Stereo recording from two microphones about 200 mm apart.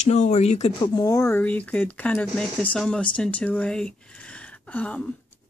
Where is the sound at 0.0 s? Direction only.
35° left (ahead or behind); by 5.1 s 5° left (ahead or behind).